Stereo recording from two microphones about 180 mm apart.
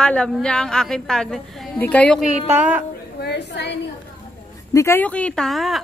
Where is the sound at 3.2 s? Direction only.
70° left (ahead or behind).